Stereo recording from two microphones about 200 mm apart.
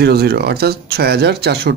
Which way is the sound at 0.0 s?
55° right (ahead or behind).